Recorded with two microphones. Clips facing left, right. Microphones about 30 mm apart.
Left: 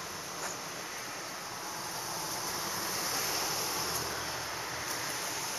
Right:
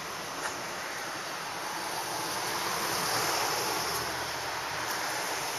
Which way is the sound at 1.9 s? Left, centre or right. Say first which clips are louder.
Right 5 dB; right.